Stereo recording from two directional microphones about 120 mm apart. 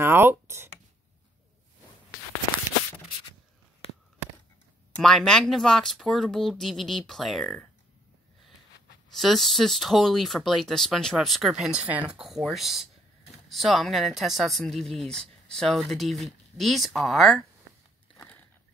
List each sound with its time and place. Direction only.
0.0 s a sound: 20° right (ahead or behind)
4.9 s speech: 5° left (ahead or behind)
9.1 s speech: centre (ahead or behind)